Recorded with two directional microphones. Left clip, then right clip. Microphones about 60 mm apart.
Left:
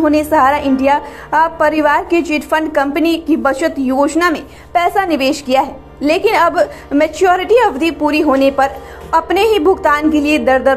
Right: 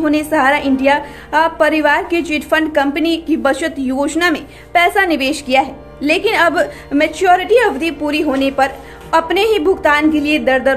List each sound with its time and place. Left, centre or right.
0.0 s a woman's voice: left